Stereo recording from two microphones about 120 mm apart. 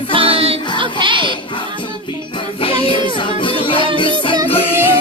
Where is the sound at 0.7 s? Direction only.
45° right (ahead or behind).